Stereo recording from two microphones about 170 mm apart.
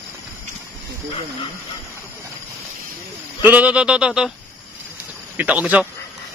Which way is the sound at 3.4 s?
10° right (ahead or behind).